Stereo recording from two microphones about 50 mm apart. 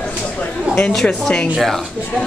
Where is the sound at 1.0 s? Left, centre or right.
Centre.